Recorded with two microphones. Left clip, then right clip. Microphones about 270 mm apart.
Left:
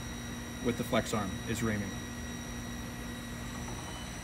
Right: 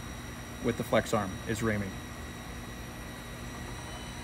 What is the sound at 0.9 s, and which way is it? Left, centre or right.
Speech, centre.